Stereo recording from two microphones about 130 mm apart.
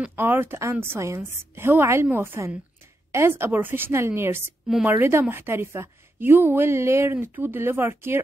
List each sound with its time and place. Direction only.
0.0 s a woman's voice: 15° right (ahead or behind)